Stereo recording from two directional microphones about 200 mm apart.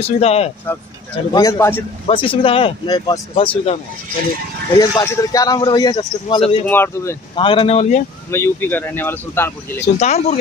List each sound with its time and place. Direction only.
0.0 s speech: 30° left (ahead or behind)
1.1 s speech: 20° left (ahead or behind)
2.0 s speech: 25° left (ahead or behind)
4.7 s speech: 20° left (ahead or behind)
6.7 s speech: 10° left (ahead or behind)
7.3 s speech: 25° left (ahead or behind)
8.3 s speech: 10° left (ahead or behind)
9.9 s speech: 35° left (ahead or behind)